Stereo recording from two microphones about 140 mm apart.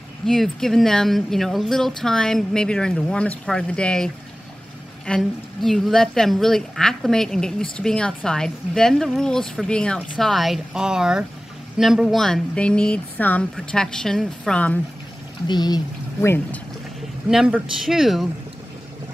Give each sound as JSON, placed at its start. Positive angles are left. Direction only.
{"t": 0.3, "sound": "speech", "side_deg": 5}
{"t": 15.4, "sound": "speech", "side_deg": 30}
{"t": 16.2, "sound": "speech", "side_deg": 15}
{"t": 17.3, "sound": "speech", "side_deg": -5}